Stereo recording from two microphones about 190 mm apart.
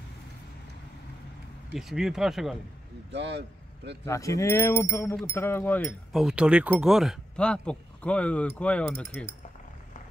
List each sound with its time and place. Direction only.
1.7 s speech: centre (ahead or behind)
3.1 s speech: 65° right (ahead or behind)
4.0 s speech: 15° left (ahead or behind)
6.1 s speech: 5° right (ahead or behind)